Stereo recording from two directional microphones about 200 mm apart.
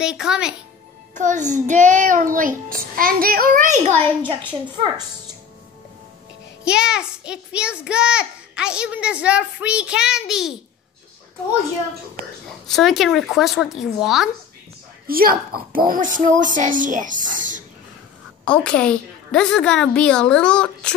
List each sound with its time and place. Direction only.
0.0 s a child's voice: 5° right (ahead or behind)
1.1 s speech: 40° right (ahead or behind)
1.7 s child singing: 40° right (ahead or behind)
4.2 s a woman's voice: 25° right (ahead or behind)
6.6 s a child's voice: 5° right (ahead or behind)
12.6 s a child's voice: centre (ahead or behind)
15.0 s child singing: 45° right (ahead or behind)
15.9 s speech: 40° right (ahead or behind)
18.4 s a child's voice: 5° left (ahead or behind)